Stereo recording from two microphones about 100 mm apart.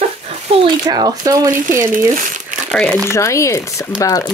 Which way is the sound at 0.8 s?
45° right (ahead or behind).